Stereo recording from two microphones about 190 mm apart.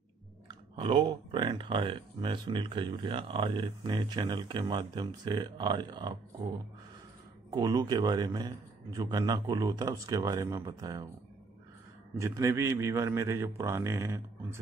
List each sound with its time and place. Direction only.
0.7 s speech: 25° right (ahead or behind)
7.5 s speech: 20° right (ahead or behind)
12.2 s a man's voice: 15° right (ahead or behind)